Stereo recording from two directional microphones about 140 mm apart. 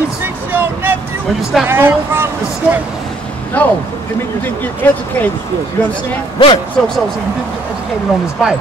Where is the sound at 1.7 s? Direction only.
15° right (ahead or behind).